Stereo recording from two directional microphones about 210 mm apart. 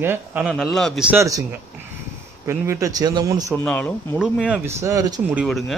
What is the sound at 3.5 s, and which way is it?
Speech, 5° left (ahead or behind).